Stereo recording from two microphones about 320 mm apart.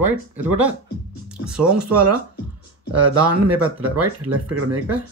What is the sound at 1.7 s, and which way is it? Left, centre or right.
Speech, right.